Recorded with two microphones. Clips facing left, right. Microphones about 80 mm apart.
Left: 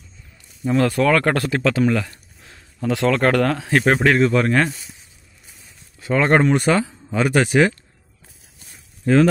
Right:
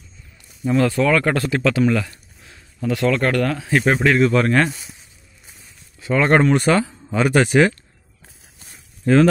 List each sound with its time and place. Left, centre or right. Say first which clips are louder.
0.8 s speech: left 1 dB; left
1.5 s speech: right 2 dB; left
2.8 s speech: left 1 dB; left
4.3 s speech: right 1 dB; centre
5.9 s a sound: even; left
6.3 s speech: right 1 dB; centre
9.0 s speech: right 1 dB; centre